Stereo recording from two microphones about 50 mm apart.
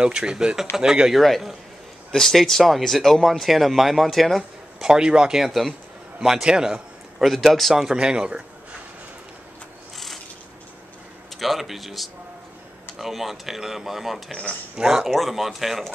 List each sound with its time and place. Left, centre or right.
0.0 s speech: centre
1.2 s speech: centre
4.8 s speech: centre
5.5 s speech: centre
6.1 s a man's voice: centre
7.2 s speech: centre
7.8 s speech: centre
11.3 s speech: centre
15.0 s speech: centre